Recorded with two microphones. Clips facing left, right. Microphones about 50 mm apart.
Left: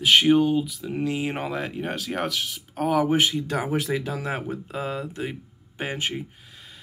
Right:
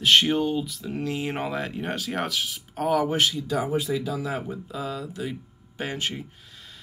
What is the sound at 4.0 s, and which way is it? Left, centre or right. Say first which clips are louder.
Speech: even; left.